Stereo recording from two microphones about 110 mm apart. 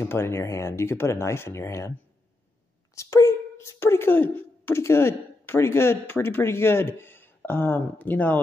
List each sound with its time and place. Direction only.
0.0 s speech: 20° left (ahead or behind)